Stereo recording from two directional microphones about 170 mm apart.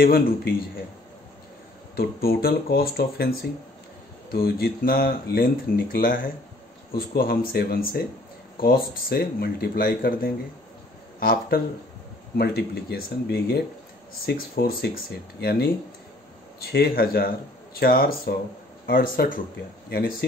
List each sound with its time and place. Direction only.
0.0 s speech: 65° left (ahead or behind)
2.0 s speech: 60° left (ahead or behind)
7.2 s speech: 65° left (ahead or behind)